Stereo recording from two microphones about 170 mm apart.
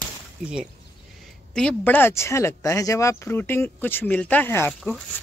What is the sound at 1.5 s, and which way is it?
Speech, 5° left (ahead or behind).